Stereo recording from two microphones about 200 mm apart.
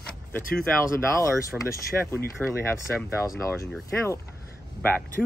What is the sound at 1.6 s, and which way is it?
Speech, 15° left (ahead or behind).